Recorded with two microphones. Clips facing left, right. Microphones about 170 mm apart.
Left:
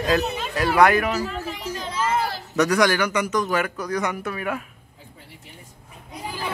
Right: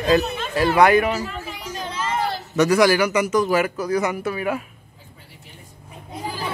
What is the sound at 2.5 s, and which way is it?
Speech, centre (ahead or behind).